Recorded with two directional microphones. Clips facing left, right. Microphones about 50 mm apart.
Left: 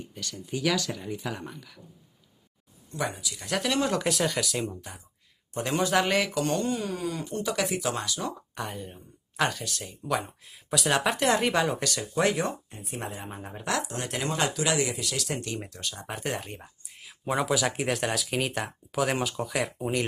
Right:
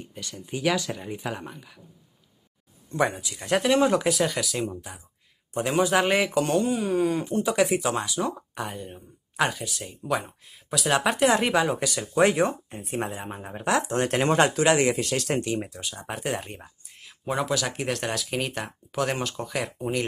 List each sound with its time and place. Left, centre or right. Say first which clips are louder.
0.2 s speech: right 2 dB; centre
2.9 s speech: right 6 dB; right
3.3 s speech: right 7 dB; right
7.0 s speech: right 8 dB; right
8.5 s speech: right 2 dB; centre
12.2 s speech: right 5 dB; right
12.8 s speech: right 6 dB; right
13.1 s speech: right 3 dB; centre
13.7 s speech: right 7 dB; right
15.4 s speech: right 5 dB; centre